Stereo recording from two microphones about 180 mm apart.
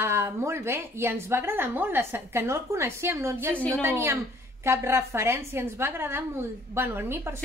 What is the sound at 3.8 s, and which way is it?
A woman's voice, 15° right (ahead or behind).